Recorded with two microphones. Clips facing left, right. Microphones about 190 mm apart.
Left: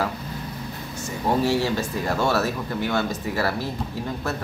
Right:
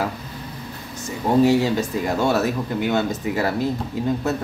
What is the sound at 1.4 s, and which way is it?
Speech, 15° right (ahead or behind).